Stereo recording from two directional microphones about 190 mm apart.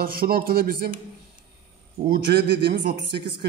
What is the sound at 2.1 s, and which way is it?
Speech, 50° right (ahead or behind).